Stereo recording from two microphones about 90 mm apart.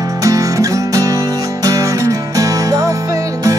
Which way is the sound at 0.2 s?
40° right (ahead or behind).